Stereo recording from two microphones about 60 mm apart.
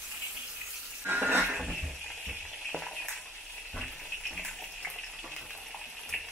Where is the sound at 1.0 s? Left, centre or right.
Right.